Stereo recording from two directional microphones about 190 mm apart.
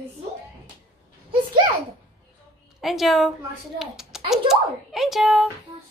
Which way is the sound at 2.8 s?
Centre (ahead or behind).